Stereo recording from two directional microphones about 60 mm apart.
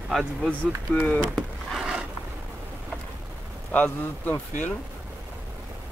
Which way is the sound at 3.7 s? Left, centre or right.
Left.